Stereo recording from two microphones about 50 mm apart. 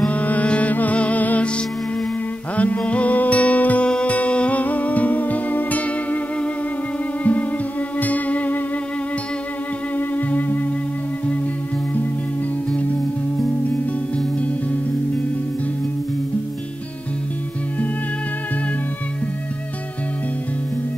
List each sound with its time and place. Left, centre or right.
0.1 s music: left
2.5 s music: left
7.3 s music: left
9.9 s music: left
14.1 s music: left